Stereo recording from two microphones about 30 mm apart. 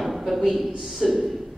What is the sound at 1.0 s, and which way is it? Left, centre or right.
Speech, centre.